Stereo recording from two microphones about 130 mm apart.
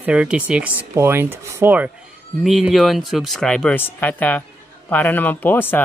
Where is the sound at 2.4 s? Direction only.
Centre (ahead or behind).